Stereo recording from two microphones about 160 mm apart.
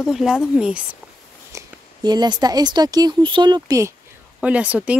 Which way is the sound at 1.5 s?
20° right (ahead or behind).